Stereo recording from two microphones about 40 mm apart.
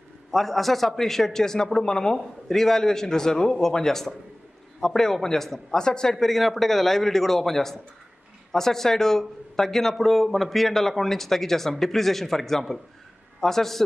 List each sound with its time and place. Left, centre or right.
0.3 s speech: centre
6.1 s a man's voice: centre